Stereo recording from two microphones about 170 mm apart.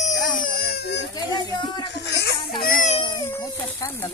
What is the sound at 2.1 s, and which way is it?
Chicken, 80° left.